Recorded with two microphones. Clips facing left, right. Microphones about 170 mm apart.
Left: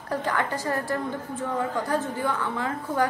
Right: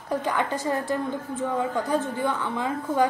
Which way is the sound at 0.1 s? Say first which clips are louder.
Right 1 dB; 15° right (ahead or behind).